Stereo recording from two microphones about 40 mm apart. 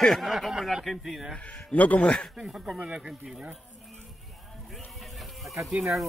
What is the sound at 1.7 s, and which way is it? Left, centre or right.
Speech, left.